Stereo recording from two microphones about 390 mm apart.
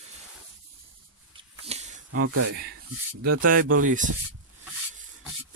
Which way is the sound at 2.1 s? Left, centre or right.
Right.